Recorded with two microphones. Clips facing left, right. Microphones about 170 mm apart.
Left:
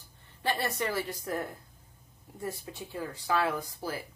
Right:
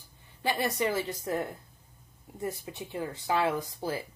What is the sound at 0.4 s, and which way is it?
Speech, 15° right (ahead or behind).